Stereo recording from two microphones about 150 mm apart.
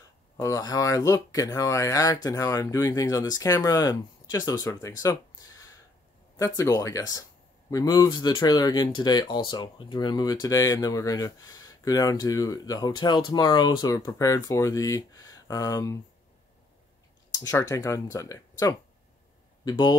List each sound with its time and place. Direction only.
0.4 s speech: 25° left (ahead or behind)
6.3 s speech: 20° left (ahead or behind)
17.3 s speech: 25° left (ahead or behind)